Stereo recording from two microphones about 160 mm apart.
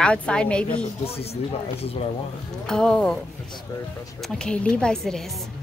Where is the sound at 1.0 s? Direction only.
40° left (ahead or behind).